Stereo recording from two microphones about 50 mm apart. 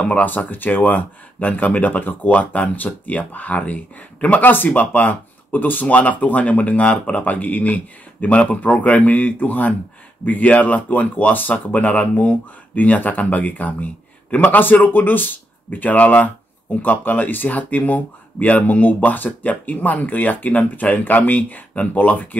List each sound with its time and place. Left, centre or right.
0.0 s speech: left